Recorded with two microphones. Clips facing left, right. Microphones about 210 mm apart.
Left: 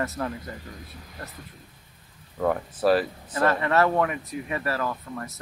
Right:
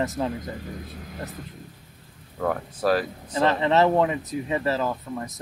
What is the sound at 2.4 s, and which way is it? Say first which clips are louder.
Speech: left 2 dB; 5° left (ahead or behind).